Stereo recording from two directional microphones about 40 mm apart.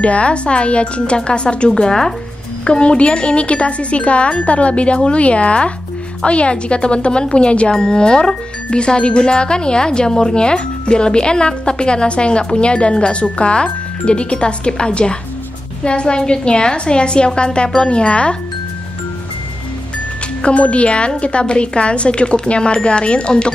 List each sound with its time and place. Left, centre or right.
0.0 s speech: left
1.7 s speech: centre
2.6 s speech: left
20.4 s speech: left